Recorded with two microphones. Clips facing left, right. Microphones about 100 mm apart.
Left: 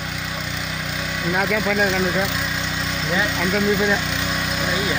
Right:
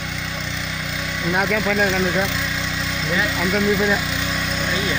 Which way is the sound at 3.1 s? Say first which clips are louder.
Even; centre (ahead or behind).